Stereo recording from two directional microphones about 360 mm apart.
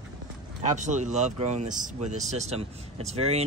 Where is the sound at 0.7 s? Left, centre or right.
Centre.